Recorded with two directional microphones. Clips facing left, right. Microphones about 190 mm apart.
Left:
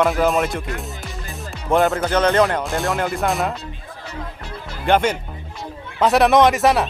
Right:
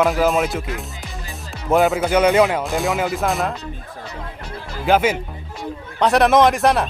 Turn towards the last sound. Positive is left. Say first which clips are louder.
# even
turn(degrees=0)  # may be behind; listen again after turning